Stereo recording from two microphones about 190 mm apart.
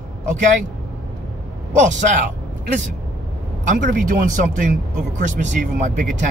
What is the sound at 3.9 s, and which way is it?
Speech, 50° right (ahead or behind).